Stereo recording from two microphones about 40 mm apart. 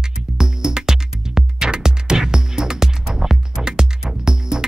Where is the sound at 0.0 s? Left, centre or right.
Centre.